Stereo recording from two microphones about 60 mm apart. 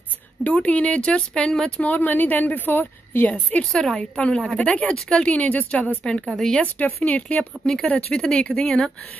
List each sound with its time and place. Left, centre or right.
0.4 s a woman's voice: left
1.8 s a woman's voice: left
3.7 s a woman's voice: centre
4.0 s a woman's voice: centre
6.0 s a woman's voice: centre
7.1 s a woman's voice: left
8.1 s a woman's voice: centre